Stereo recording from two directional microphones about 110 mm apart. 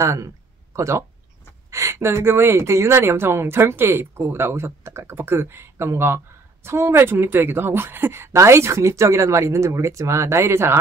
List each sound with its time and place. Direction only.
0.0 s speech: 30° right (ahead or behind)